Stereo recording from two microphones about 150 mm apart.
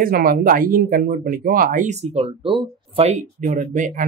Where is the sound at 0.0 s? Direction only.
75° right (ahead or behind); by 3.1 s 35° right (ahead or behind).